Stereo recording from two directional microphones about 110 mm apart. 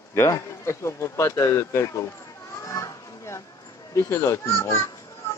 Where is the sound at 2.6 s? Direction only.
30° left (ahead or behind).